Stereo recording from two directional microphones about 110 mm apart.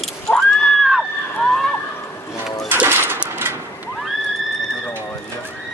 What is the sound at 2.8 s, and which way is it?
Bird, 20° right (ahead or behind).